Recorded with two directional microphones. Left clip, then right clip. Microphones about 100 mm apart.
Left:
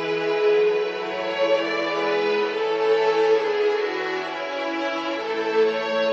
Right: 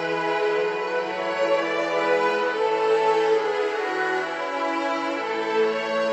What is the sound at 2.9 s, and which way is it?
Music, 15° left (ahead or behind).